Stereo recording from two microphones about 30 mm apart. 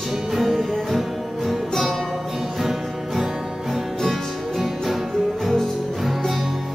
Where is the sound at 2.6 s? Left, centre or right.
Centre.